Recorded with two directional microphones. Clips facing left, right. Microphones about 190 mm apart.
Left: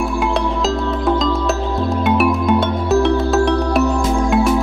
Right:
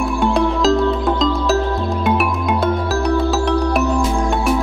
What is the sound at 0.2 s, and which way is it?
Music, centre (ahead or behind).